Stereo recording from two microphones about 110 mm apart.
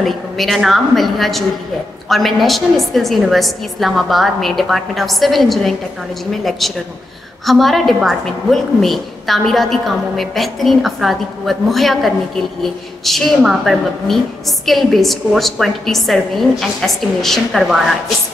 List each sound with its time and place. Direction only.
0.0 s a woman's voice: centre (ahead or behind)